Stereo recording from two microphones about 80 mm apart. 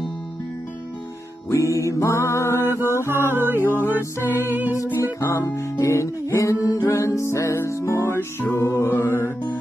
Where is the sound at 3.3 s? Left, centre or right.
Right.